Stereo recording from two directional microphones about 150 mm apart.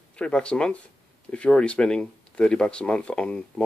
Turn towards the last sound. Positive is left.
turn(degrees=5)  # may be behind; listen again after turning